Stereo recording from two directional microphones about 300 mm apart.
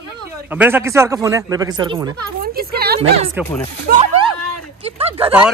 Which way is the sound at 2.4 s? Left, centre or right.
Right.